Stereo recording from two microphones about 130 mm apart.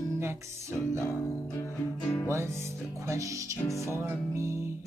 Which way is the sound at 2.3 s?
20° right (ahead or behind).